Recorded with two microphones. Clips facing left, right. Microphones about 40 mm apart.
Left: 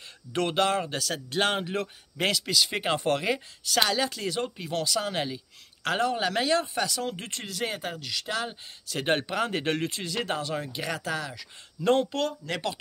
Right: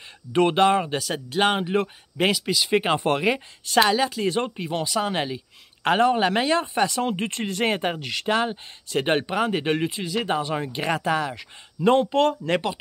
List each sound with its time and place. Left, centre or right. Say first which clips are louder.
0.3 s speech: right 7 dB; right
4.3 s speech: right 5 dB; right
8.5 s speech: right 7 dB; centre